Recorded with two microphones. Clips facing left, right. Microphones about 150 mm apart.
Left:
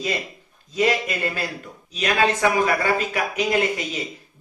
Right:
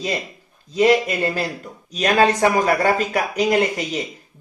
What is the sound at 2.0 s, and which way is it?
Speech, 40° right (ahead or behind).